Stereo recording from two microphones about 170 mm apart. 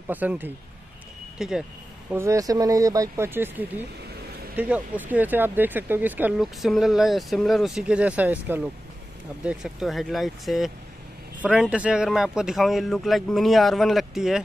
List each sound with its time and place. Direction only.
0.1 s speech: 10° right (ahead or behind)
2.1 s speech: 20° right (ahead or behind); by 14.4 s centre (ahead or behind)